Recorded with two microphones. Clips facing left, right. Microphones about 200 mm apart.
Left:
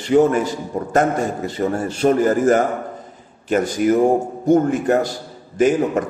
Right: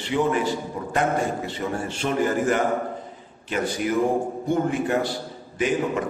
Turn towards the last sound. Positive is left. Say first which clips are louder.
# left 7 dB
turn(degrees=45)  # may be behind; listen again after turning